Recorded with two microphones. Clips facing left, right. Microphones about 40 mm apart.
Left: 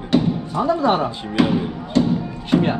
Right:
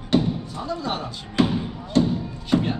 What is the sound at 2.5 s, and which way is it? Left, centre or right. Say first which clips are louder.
Music: left 4 dB; left.